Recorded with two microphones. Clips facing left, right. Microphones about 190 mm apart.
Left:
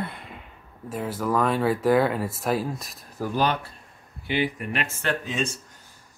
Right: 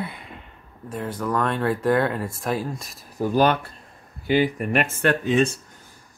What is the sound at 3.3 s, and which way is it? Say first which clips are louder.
Speech: right 5 dB; 50° right (ahead or behind).